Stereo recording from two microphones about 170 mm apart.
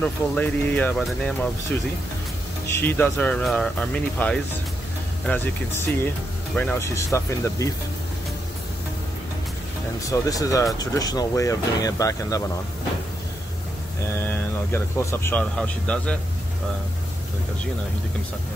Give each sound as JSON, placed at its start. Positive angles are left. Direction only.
{"t": 0.0, "sound": "speech", "side_deg": 10}
{"t": 2.8, "sound": "speech", "side_deg": 10}
{"t": 10.0, "sound": "speech", "side_deg": 20}
{"t": 14.0, "sound": "speech", "side_deg": 15}